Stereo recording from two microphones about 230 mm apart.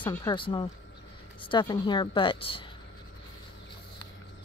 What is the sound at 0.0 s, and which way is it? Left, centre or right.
Speech, centre.